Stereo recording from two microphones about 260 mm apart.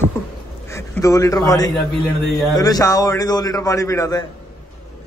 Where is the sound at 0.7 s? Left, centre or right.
Centre.